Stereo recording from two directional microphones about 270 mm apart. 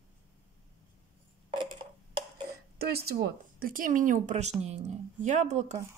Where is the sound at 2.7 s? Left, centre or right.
Right.